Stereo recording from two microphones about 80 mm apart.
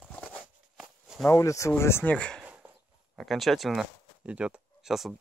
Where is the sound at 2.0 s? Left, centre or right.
Centre.